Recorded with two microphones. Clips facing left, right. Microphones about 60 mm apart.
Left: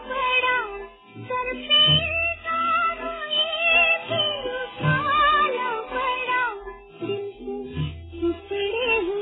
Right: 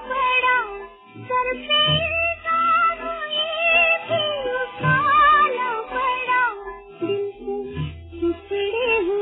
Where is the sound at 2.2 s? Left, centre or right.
Centre.